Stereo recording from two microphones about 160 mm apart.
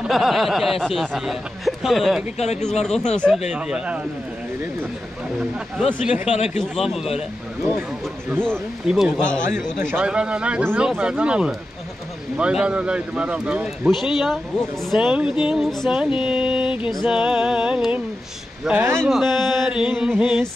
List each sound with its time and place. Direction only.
0.0 s a man's voice: centre (ahead or behind)
2.3 s speech: 45° left (ahead or behind)
3.5 s speech: 5° right (ahead or behind)
5.8 s a man's voice: 5° right (ahead or behind)
6.2 s speech: 40° left (ahead or behind)
6.6 s a man's voice: centre (ahead or behind)
7.2 s speech: 10° right (ahead or behind)
8.4 s a man's voice: centre (ahead or behind); by 18.9 s 15° right (ahead or behind)
19.3 s a man's voice: centre (ahead or behind)